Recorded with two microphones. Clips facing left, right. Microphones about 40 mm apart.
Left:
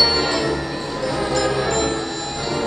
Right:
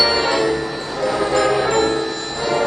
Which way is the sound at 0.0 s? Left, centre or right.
Centre.